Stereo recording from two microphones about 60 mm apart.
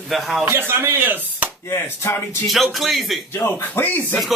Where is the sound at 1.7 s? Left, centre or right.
Left.